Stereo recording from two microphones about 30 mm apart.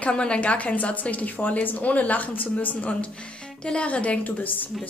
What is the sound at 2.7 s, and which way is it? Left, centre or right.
Speech, left.